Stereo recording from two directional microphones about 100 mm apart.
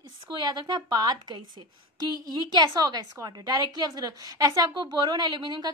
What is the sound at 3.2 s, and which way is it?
A woman's voice, 40° right (ahead or behind).